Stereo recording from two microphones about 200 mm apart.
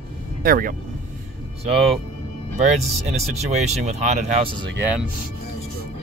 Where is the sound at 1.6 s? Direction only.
30° right (ahead or behind).